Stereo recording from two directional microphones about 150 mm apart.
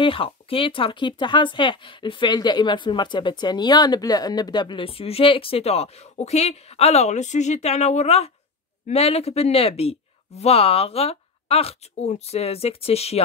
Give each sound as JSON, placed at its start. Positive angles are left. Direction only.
{"t": 0.0, "sound": "speech", "side_deg": 35}